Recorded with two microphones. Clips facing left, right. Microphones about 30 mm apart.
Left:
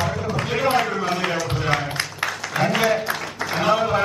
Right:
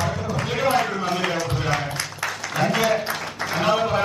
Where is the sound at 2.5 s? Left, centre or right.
Centre.